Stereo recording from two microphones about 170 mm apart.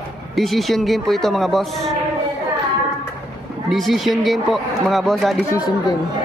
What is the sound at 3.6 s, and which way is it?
A man's voice, centre (ahead or behind).